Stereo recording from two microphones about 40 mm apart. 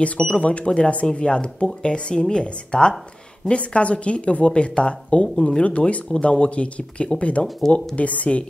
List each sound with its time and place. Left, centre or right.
0.4 s speech: left